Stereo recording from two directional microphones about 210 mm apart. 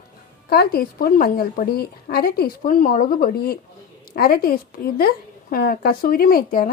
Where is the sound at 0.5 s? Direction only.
45° left (ahead or behind).